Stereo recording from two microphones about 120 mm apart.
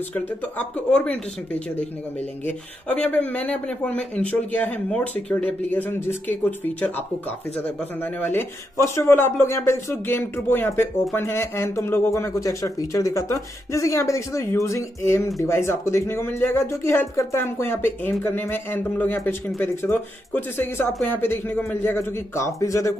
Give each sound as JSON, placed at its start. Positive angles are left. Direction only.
{"t": 0.1, "sound": "speech", "side_deg": 10}